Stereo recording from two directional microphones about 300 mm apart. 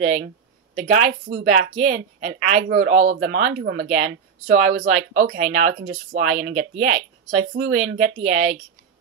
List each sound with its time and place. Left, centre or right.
0.0 s speech: right
8.0 s speech: right